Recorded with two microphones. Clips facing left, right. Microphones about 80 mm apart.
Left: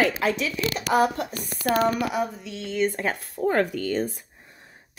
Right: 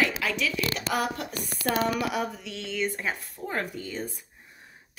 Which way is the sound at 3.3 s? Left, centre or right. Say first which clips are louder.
Left 9 dB; left.